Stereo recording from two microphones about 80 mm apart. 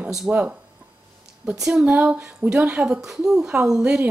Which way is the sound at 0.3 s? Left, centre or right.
Centre.